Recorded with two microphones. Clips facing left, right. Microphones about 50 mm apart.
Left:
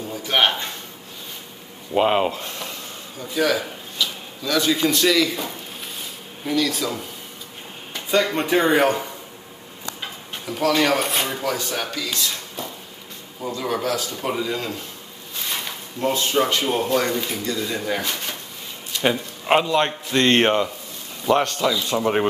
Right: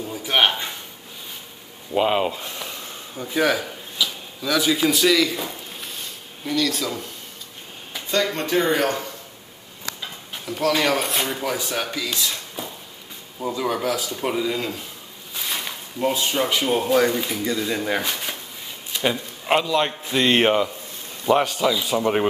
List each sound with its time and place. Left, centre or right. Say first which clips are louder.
0.1 s a sound: even; centre
2.0 s speech: left 2 dB; centre
3.2 s speech: even; centre
4.0 s speech: right 1 dB; centre
8.1 s speech: left 3 dB; centre
10.3 s speech: left 1 dB; centre
11.4 s speech: even; centre
19.0 s a man's voice: left 2 dB; centre
20.1 s speech: even; centre